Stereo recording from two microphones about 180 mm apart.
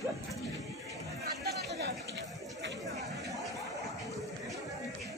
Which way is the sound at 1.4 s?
70° right (ahead or behind).